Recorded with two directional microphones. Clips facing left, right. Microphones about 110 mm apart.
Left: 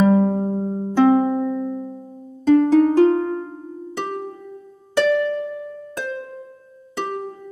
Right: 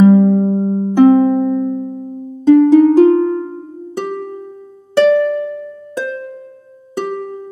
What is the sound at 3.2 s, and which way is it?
Music, 5° left (ahead or behind).